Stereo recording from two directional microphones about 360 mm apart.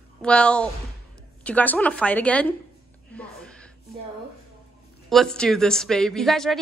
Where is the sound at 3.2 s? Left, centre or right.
Centre.